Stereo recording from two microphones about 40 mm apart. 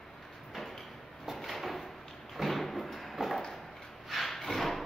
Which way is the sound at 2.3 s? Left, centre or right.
Centre.